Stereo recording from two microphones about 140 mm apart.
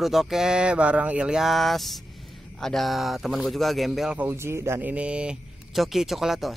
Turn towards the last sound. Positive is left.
turn(degrees=0)  # may be behind; listen again after turning